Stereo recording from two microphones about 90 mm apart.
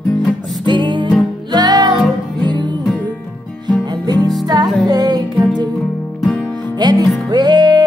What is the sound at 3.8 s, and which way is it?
Music, 50° right (ahead or behind).